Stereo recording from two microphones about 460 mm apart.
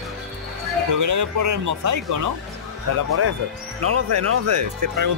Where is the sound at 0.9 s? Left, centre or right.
Right.